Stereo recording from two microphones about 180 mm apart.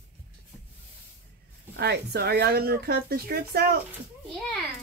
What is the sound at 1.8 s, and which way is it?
Speech, 65° right (ahead or behind).